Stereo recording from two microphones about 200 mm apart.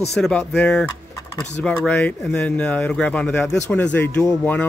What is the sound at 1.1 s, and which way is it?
Typing, 10° left (ahead or behind).